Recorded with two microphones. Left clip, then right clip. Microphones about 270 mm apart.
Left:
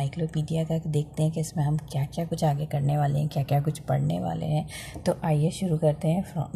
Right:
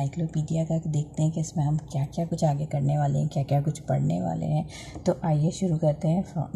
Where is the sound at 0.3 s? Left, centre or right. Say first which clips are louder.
Even; left.